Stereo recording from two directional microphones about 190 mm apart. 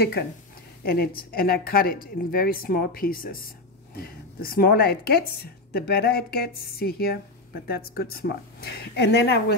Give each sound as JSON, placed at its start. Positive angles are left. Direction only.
{"t": 0.8, "sound": "a woman's voice", "side_deg": 50}